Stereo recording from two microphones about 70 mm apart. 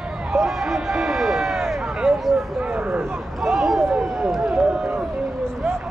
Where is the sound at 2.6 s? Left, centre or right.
Centre.